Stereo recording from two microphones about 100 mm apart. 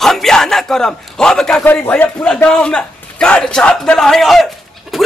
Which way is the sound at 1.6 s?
15° left (ahead or behind).